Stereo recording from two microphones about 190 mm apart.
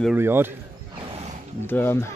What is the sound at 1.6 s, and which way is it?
Speech, 10° left (ahead or behind).